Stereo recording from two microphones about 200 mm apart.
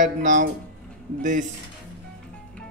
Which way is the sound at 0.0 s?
40° right (ahead or behind).